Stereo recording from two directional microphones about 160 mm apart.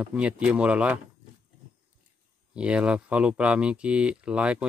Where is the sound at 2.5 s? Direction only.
5° right (ahead or behind).